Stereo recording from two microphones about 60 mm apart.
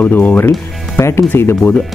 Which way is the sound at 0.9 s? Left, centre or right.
Left.